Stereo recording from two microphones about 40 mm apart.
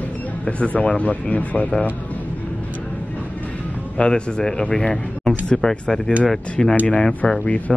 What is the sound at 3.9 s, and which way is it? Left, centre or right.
A man's voice, left.